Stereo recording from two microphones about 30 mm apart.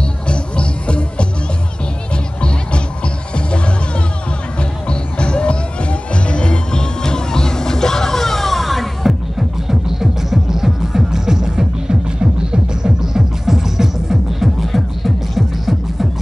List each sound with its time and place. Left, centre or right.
0.3 s music: left
4.6 s music: left; by 9.1 s centre
9.7 s music: centre
12.8 s music: centre
14.6 s music: centre